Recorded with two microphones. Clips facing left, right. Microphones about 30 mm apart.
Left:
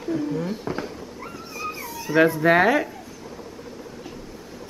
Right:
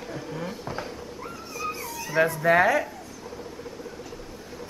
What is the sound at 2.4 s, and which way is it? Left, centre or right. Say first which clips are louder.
Speech: right 1 dB; left.